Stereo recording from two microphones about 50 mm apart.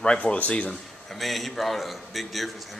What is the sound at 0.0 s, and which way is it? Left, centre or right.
Speech, left.